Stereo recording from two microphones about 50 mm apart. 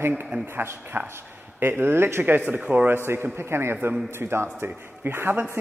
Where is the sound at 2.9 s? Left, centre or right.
Right.